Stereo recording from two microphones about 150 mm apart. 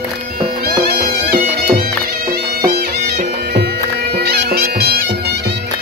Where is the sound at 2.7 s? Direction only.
90° right.